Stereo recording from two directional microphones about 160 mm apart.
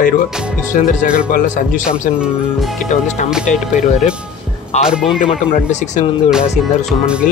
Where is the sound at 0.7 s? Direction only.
60° left (ahead or behind).